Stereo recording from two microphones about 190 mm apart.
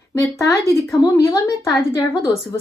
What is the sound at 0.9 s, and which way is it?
Speech, 15° left (ahead or behind).